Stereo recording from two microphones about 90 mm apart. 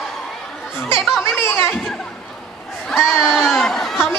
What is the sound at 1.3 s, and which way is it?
Chatter, 25° left (ahead or behind).